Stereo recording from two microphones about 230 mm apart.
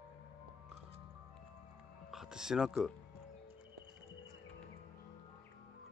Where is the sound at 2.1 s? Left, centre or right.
Centre.